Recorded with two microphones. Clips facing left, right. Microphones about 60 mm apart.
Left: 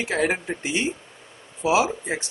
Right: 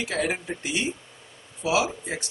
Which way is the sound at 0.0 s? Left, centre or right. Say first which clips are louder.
Left 4 dB; left.